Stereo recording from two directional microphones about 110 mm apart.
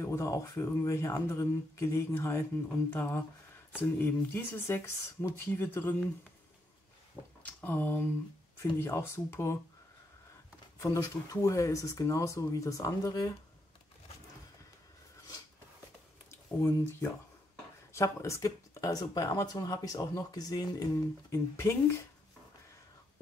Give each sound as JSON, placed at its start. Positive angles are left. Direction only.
{"t": 0.0, "sound": "speech", "side_deg": 30}
{"t": 7.4, "sound": "speech", "side_deg": 15}
{"t": 10.8, "sound": "speech", "side_deg": 30}
{"t": 16.3, "sound": "speech", "side_deg": 25}